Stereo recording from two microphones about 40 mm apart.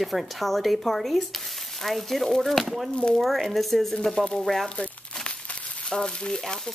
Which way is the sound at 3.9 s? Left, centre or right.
Centre.